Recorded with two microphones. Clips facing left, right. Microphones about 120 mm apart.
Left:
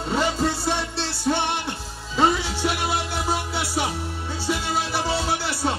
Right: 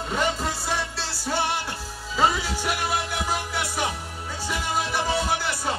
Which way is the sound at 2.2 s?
30° left (ahead or behind).